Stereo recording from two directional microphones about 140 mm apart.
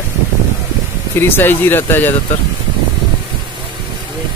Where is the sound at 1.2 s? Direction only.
15° left (ahead or behind).